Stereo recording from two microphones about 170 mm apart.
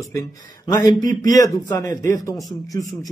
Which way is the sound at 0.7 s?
25° left (ahead or behind).